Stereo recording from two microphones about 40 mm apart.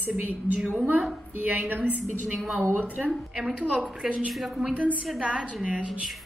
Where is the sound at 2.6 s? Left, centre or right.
Left.